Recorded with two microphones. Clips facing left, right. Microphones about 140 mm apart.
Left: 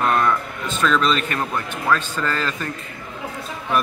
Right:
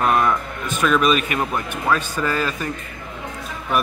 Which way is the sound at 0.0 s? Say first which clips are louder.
Right 1 dB; 15° right (ahead or behind).